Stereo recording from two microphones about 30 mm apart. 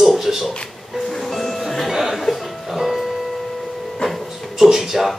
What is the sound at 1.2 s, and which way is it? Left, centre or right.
Music, centre.